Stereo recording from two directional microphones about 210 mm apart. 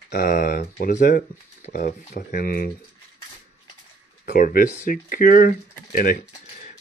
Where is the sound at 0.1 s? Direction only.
40° left (ahead or behind).